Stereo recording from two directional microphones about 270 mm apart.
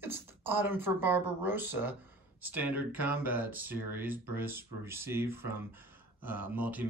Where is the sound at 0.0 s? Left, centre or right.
Centre.